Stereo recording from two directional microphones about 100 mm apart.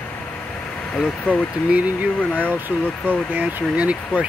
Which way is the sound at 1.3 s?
15° right (ahead or behind).